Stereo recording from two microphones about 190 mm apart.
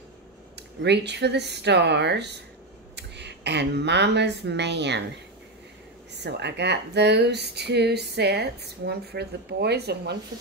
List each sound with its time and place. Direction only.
0.6 s speech: 65° right (ahead or behind)
6.1 s speech: 60° right (ahead or behind)